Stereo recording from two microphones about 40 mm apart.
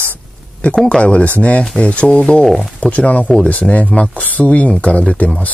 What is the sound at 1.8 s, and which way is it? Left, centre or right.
Speech, left.